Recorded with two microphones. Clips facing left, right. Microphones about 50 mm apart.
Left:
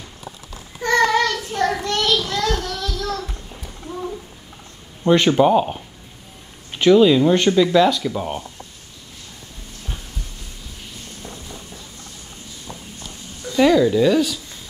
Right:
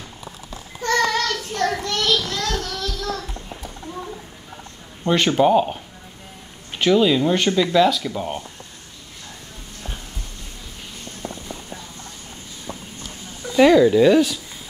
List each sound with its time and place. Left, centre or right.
0.8 s child singing: centre
5.0 s speech: centre
6.8 s speech: centre
11.2 s a sound: right
13.5 s speech: centre